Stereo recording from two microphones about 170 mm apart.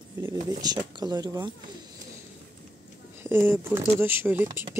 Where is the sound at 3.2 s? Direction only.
15° right (ahead or behind).